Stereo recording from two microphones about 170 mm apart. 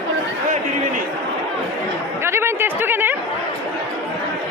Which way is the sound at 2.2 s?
15° right (ahead or behind).